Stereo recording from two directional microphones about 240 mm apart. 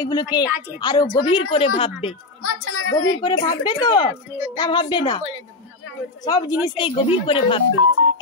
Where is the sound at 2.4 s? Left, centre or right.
Left.